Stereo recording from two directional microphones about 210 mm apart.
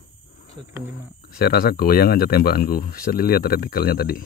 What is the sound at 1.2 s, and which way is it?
Speech, 50° left (ahead or behind).